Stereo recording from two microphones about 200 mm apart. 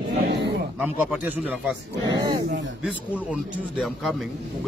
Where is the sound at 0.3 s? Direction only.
55° right (ahead or behind).